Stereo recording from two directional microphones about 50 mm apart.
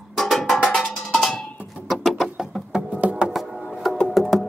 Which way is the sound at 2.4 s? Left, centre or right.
Centre.